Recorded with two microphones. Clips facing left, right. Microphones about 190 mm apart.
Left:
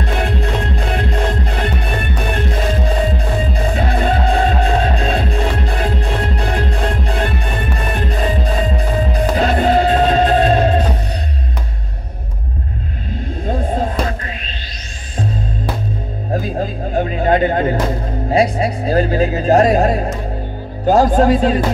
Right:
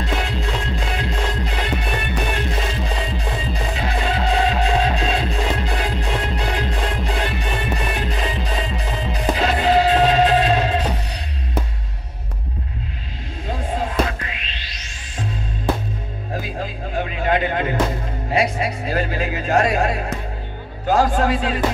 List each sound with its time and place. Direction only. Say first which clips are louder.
0.0 s music: left 4 dB; 55° left (ahead or behind)
13.5 s music: left 5 dB; 45° left (ahead or behind)
16.3 s music: left 7 dB; 40° left (ahead or behind)
18.3 s a sound: left 5 dB; 35° left (ahead or behind)
20.8 s music: left 6 dB; 40° left (ahead or behind)